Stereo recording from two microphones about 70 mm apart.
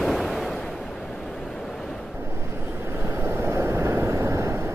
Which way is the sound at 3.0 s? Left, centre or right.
Right.